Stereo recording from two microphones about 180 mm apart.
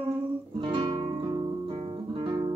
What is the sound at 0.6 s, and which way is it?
Guitar, 25° right (ahead or behind).